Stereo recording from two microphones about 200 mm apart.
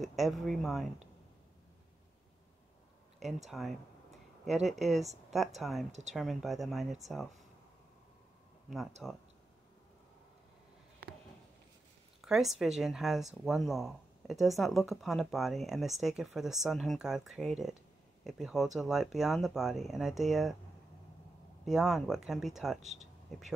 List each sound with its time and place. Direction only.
0.0 s speech: centre (ahead or behind)
3.4 s a sound: centre (ahead or behind)
4.6 s speech: centre (ahead or behind)
5.9 s speech: 35° right (ahead or behind)
6.1 s speech: centre (ahead or behind)
8.6 s speech: centre (ahead or behind)
12.2 s speech: centre (ahead or behind)
21.6 s speech: centre (ahead or behind)